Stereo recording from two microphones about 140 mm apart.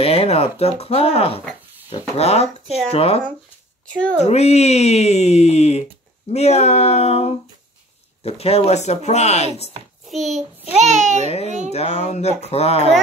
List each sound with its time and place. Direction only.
0.0 s speech: 45° left (ahead or behind)
3.8 s speech: 10° left (ahead or behind)
4.2 s speech: 50° left (ahead or behind)
10.0 s a child's voice: centre (ahead or behind)
10.8 s a child's voice: 55° right (ahead or behind)
11.7 s speech: 50° left (ahead or behind)